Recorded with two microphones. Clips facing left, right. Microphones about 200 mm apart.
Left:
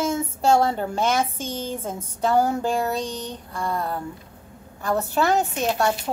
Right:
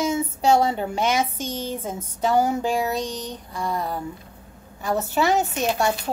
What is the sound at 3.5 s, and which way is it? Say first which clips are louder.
Speech: even; 5° right (ahead or behind).